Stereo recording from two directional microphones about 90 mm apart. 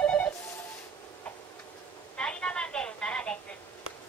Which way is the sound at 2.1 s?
10° left (ahead or behind).